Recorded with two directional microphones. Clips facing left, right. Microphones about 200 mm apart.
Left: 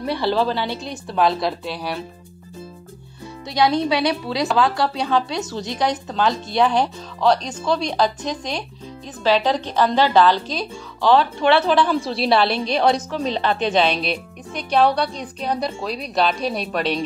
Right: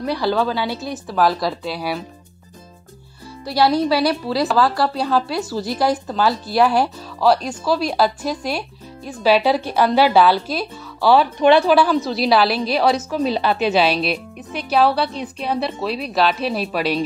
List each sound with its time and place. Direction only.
0.4 s a woman's voice: 5° right (ahead or behind)
3.4 s a woman's voice: 5° right (ahead or behind)